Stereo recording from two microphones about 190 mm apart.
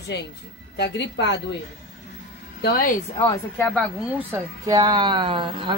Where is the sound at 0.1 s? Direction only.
60° left (ahead or behind).